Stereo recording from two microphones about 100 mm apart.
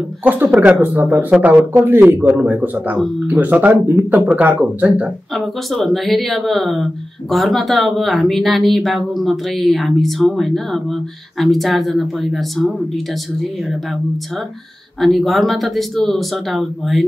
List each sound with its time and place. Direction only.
0.2 s speech: 20° right (ahead or behind)
5.3 s speech: centre (ahead or behind)
15.0 s speech: centre (ahead or behind)